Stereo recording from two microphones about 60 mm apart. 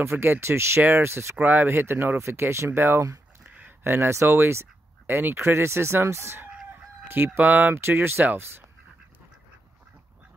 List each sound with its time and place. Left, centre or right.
0.0 s speech: right
2.1 s speech: right
3.4 s a sound: right
3.8 s speech: right
5.4 s speech: right
7.1 s speech: right
7.7 s speech: right